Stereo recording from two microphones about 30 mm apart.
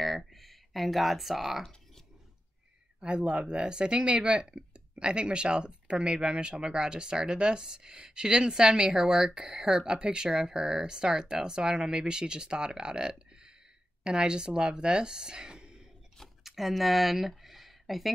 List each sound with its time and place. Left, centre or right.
0.0 s a sound: centre
3.0 s speech: right
9.8 s speech: right
16.4 s speech: centre